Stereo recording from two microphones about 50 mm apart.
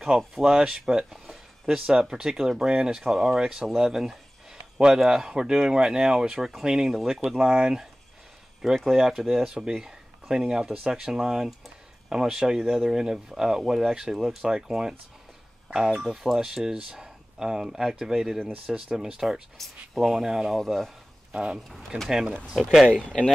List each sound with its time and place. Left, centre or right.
0.4 s speech: centre
1.1 s speech: centre; by 7.7 s right
8.9 s speech: centre
20.5 s speech: centre
21.3 s speech: centre
21.6 s speech: centre